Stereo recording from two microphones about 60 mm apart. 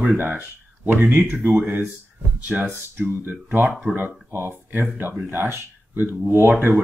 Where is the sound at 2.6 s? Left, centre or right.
Right.